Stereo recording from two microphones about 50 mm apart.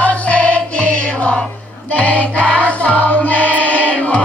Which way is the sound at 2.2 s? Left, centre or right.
Left.